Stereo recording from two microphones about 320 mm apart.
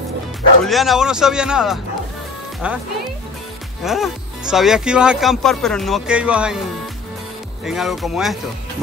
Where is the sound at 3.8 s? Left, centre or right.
Centre.